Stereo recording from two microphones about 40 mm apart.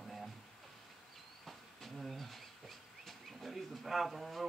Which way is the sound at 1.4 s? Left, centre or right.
Centre.